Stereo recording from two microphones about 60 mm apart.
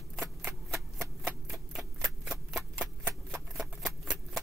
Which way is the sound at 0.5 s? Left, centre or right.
Right.